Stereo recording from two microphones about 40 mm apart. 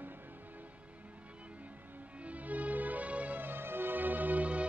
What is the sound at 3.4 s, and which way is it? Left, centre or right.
Music, right.